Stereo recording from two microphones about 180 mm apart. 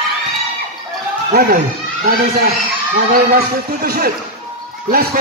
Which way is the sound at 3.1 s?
55° right (ahead or behind).